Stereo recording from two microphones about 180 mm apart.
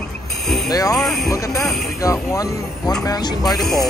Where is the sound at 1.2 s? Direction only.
20° left (ahead or behind).